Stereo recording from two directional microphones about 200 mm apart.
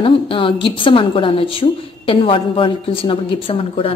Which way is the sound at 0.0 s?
25° left (ahead or behind).